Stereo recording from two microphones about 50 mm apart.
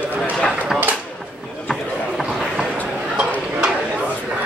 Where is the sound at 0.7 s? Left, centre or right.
Centre.